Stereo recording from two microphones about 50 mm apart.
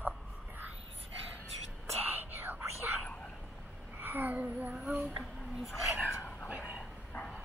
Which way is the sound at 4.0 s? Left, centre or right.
Right.